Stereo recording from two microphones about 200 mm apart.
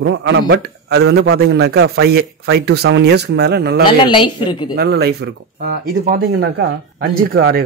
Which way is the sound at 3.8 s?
25° left (ahead or behind).